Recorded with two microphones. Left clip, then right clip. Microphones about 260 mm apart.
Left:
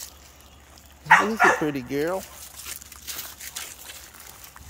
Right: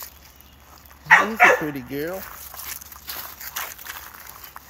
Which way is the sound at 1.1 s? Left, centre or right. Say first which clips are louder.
Right 3 dB; right.